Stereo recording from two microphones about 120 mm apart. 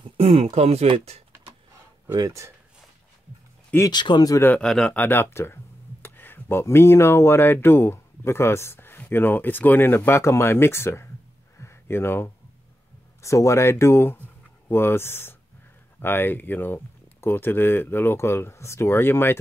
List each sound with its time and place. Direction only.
0.0 s speech: 50° right (ahead or behind)
2.1 s speech: 25° right (ahead or behind)
3.9 s speech: 40° left (ahead or behind)
4.6 s speech: 5° left (ahead or behind); by 11.1 s 20° left (ahead or behind)
11.5 s a sound: 20° left (ahead or behind)
13.2 s speech: 25° left (ahead or behind)